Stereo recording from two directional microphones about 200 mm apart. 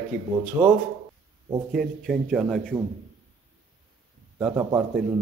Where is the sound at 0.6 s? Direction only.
15° right (ahead or behind).